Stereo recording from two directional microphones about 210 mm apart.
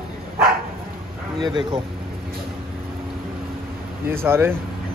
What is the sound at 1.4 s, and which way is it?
Speech, 25° right (ahead or behind).